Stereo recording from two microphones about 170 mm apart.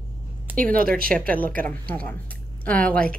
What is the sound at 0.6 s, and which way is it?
Speech, 55° right (ahead or behind).